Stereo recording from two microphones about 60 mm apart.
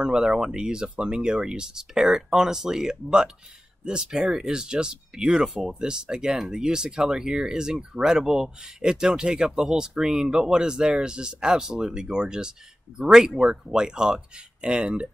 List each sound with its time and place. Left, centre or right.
0.0 s speech: centre